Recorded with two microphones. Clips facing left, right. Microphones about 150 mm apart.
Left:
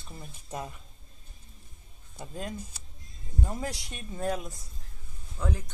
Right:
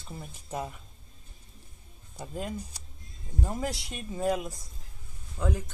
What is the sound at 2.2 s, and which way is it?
A woman's voice, 10° right (ahead or behind).